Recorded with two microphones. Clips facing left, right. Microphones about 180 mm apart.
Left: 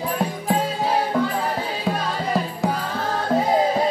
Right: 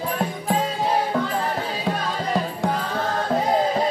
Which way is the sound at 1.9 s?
5° left (ahead or behind).